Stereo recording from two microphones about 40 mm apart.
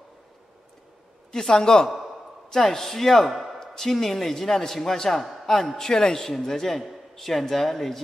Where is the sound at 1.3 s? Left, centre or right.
Centre.